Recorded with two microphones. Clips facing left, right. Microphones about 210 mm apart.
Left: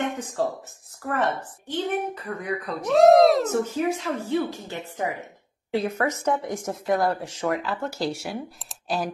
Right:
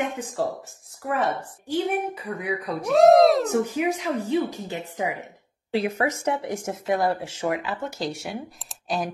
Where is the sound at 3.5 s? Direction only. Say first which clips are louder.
Right 1 dB; 15° right (ahead or behind).